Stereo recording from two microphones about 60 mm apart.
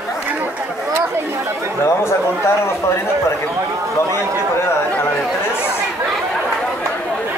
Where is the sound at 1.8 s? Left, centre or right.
Left.